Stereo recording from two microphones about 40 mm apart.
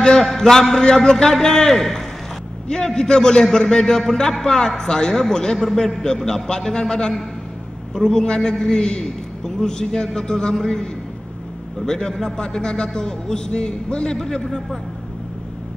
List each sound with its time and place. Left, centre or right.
0.2 s a man's voice: centre